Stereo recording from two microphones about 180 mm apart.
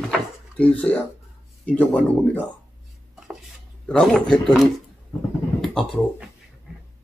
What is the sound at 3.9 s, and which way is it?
Speech, 5° left (ahead or behind).